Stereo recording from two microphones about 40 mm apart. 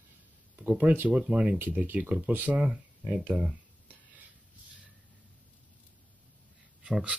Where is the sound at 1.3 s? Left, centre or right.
Right.